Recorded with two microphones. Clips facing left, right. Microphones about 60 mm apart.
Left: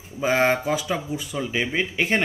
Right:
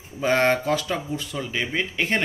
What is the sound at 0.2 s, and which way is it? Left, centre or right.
Speech, centre.